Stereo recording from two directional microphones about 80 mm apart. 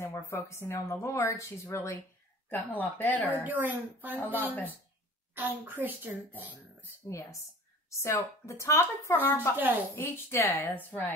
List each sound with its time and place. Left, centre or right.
0.0 s speech: left
2.5 s speech: left
3.3 s a child's voice: right
7.1 s a woman's voice: left